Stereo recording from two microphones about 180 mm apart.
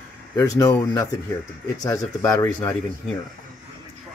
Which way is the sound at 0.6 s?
20° left (ahead or behind).